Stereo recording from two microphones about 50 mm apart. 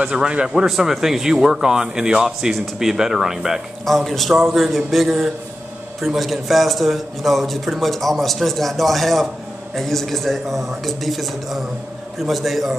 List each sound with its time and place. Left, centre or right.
0.1 s speech: centre
0.5 s speech: centre
2.5 s speech: centre
3.8 s a man's voice: centre